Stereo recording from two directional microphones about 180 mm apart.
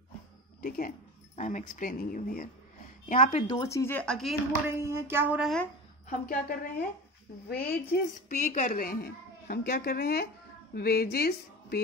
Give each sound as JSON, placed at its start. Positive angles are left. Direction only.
{"t": 0.6, "sound": "speech", "side_deg": 50}
{"t": 3.4, "sound": "speech", "side_deg": 20}
{"t": 4.7, "sound": "speech", "side_deg": -15}
{"t": 6.0, "sound": "a woman's voice", "side_deg": 50}
{"t": 7.8, "sound": "a woman's voice", "side_deg": 40}